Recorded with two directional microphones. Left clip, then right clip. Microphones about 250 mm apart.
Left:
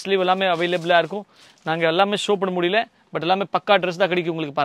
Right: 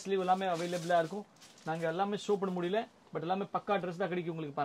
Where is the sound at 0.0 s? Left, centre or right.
Left.